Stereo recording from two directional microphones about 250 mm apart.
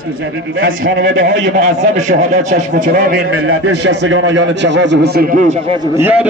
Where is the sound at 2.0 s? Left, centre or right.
Right.